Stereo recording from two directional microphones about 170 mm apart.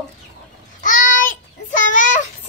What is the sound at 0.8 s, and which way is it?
Child singing, 50° left (ahead or behind).